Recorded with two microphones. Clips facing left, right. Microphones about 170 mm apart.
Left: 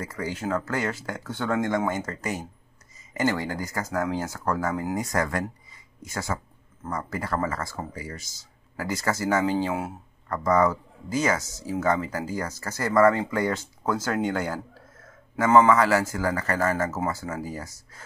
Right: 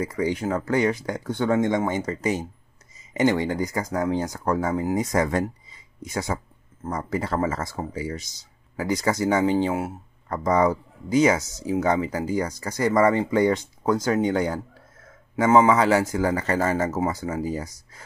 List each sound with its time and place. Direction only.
0.0 s speech: 15° right (ahead or behind)